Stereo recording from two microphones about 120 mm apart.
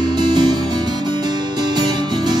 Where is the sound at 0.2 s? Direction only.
35° right (ahead or behind).